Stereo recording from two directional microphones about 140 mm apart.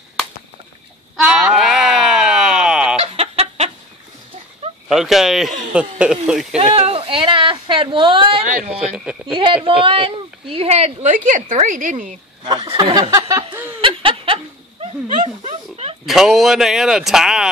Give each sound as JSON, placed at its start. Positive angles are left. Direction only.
{"t": 1.1, "sound": "a sound", "side_deg": -5}
{"t": 3.0, "sound": "chicken", "side_deg": -45}
{"t": 4.8, "sound": "speech", "side_deg": 0}
{"t": 6.6, "sound": "a woman's voice", "side_deg": -45}
{"t": 12.7, "sound": "a woman's voice", "side_deg": -30}
{"t": 13.1, "sound": "a sound", "side_deg": -25}
{"t": 13.7, "sound": "snicker", "side_deg": -40}
{"t": 15.0, "sound": "a sound", "side_deg": -60}
{"t": 16.1, "sound": "speech", "side_deg": 0}